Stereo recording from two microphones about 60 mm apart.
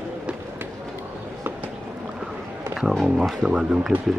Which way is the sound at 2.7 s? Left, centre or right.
Centre.